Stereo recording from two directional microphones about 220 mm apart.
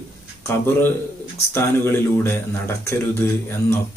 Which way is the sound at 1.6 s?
10° left (ahead or behind).